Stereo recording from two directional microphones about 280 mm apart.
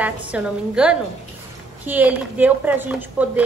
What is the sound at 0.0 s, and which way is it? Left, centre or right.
Speech, centre.